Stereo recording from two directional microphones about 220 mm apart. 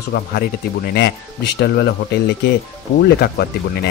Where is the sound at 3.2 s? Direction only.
45° left (ahead or behind).